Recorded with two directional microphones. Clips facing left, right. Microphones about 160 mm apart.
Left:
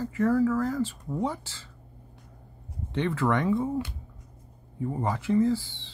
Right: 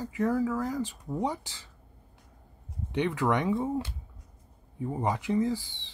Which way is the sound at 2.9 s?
15° right (ahead or behind).